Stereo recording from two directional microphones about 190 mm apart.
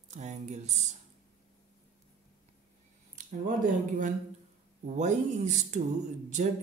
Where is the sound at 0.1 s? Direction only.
40° right (ahead or behind).